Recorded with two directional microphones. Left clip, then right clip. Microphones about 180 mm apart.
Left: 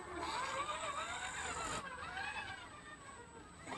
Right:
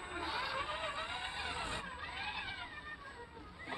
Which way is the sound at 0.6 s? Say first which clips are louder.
Right 2 dB; centre (ahead or behind).